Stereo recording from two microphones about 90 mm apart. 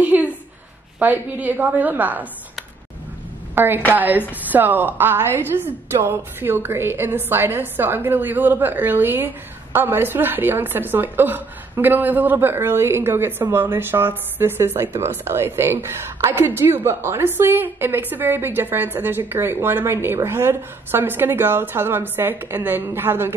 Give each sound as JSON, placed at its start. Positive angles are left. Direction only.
{"t": 0.0, "sound": "a sound", "side_deg": -15}
{"t": 0.9, "sound": "a woman's voice", "side_deg": -20}
{"t": 3.5, "sound": "a woman's voice", "side_deg": -25}